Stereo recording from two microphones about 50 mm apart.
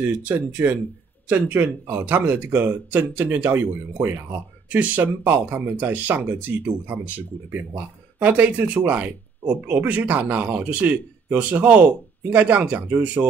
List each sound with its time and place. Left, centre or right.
0.1 s speech: right
1.3 s speech: right
3.4 s speech: right
4.6 s speech: right
8.2 s speech: right
10.6 s speech: right